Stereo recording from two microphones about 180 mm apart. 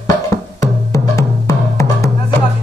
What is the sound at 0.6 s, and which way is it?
Music, 15° left (ahead or behind).